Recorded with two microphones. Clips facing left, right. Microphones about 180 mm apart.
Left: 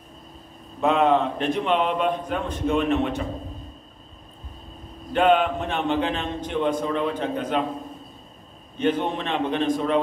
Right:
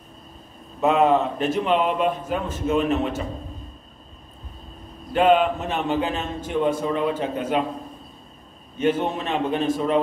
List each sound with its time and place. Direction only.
0.7 s a man's voice: 5° right (ahead or behind)
5.1 s a man's voice: 5° right (ahead or behind)
8.7 s a man's voice: 5° right (ahead or behind)